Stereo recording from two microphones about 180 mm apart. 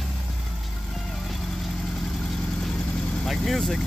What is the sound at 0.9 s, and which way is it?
Vehicle, centre (ahead or behind).